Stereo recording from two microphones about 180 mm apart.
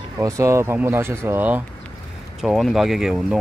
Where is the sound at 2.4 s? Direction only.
Centre (ahead or behind).